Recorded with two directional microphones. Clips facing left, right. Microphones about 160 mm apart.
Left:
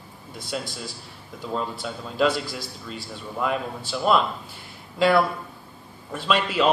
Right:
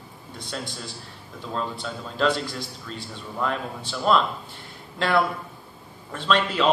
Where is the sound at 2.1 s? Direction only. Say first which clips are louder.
Left 1 dB; 10° left (ahead or behind).